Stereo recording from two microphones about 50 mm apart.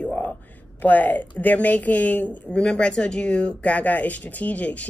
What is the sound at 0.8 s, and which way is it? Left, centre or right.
Speech, left.